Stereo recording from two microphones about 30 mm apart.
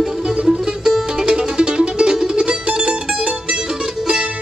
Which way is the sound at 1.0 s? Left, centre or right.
Right.